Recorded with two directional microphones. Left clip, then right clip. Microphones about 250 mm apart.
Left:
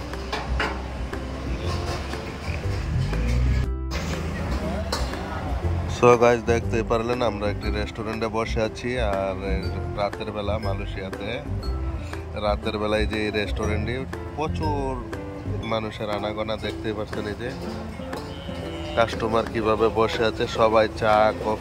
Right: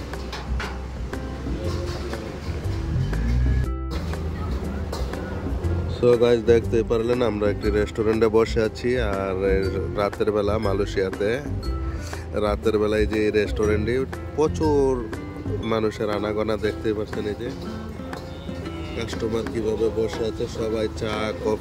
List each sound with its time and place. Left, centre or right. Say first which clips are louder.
6.0 s speech: even; centre
12.4 s speech: right 4 dB; centre
18.9 s speech: left 6 dB; centre